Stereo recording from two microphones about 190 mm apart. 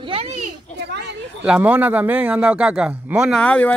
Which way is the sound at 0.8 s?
60° right (ahead or behind).